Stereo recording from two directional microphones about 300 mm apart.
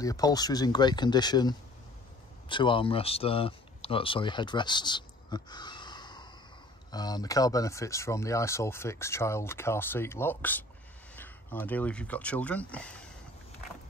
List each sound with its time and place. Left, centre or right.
0.0 s speech: centre